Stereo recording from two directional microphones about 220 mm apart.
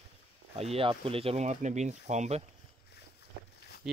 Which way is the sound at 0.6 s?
25° right (ahead or behind).